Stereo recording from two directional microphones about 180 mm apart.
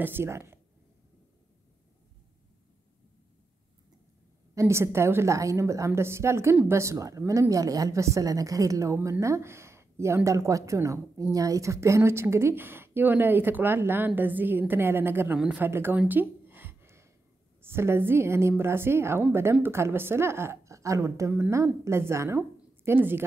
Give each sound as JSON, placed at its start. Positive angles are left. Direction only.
{"t": 0.0, "sound": "speech", "side_deg": -10}
{"t": 4.6, "sound": "speech", "side_deg": -15}